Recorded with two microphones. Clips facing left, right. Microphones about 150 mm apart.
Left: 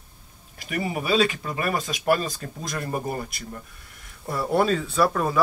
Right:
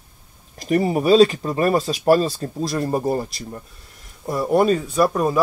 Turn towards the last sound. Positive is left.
turn(degrees=-20)  # may be behind; listen again after turning